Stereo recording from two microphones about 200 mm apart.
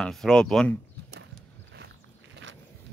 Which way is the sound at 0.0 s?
Centre (ahead or behind).